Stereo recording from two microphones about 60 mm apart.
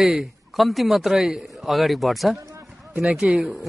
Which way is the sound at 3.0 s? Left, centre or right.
Centre.